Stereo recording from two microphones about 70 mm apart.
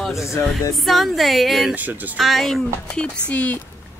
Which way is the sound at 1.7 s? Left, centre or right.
Right.